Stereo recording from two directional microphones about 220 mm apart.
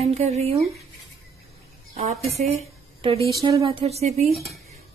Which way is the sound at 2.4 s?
25° right (ahead or behind).